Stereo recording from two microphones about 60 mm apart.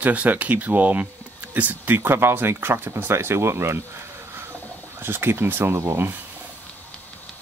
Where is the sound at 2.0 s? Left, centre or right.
Right.